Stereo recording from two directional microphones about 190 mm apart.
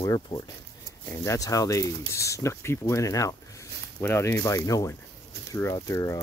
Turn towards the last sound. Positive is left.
turn(degrees=15)  # may be behind; listen again after turning